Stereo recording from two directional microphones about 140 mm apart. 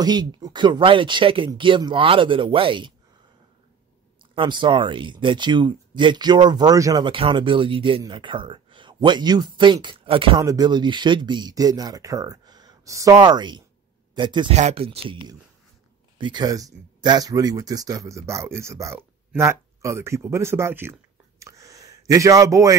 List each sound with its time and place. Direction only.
0.0 s speech: 30° right (ahead or behind)
4.2 s speech: 35° right (ahead or behind)
7.2 s speech: 40° right (ahead or behind)
10.4 s speech: 25° right (ahead or behind)
14.5 s speech: 50° right (ahead or behind)
16.2 s speech: 35° right (ahead or behind); by 20.9 s 15° right (ahead or behind)
21.4 s a sound: 25° right (ahead or behind)